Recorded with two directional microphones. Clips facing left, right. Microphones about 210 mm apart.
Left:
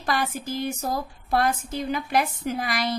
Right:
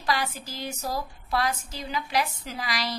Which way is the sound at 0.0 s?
50° left (ahead or behind).